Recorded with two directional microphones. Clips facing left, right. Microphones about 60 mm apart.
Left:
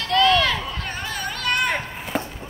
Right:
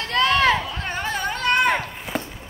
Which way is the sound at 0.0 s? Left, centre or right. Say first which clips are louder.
Left 1 dB; right.